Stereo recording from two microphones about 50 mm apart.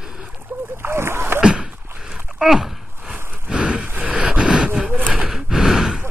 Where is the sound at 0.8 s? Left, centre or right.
Right.